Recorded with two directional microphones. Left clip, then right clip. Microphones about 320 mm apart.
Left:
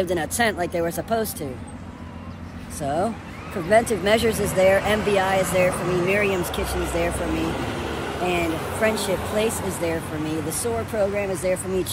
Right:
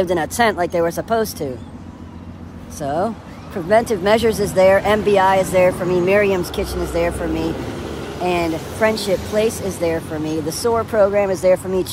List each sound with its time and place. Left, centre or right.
0.0 s speech: centre
2.8 s speech: centre
7.4 s vehicle: left
8.3 s speech: centre